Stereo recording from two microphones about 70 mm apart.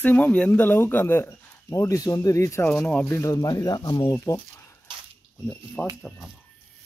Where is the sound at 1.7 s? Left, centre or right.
Left.